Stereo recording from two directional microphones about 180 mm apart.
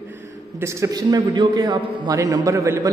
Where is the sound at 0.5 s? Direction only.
15° right (ahead or behind).